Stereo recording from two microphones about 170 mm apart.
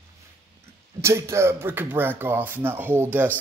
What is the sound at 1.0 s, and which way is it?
Speech, 15° right (ahead or behind).